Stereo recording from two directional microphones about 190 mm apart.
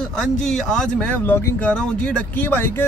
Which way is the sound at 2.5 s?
10° left (ahead or behind).